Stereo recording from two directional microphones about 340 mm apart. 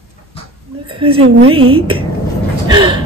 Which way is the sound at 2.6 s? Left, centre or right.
Centre.